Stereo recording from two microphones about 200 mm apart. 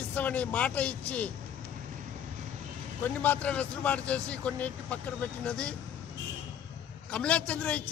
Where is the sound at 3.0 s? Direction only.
10° left (ahead or behind).